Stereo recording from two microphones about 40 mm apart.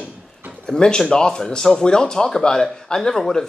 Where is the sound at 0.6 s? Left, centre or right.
Centre.